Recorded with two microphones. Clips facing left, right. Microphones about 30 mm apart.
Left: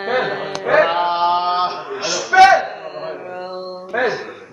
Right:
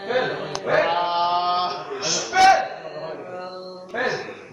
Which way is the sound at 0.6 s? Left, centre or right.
Centre.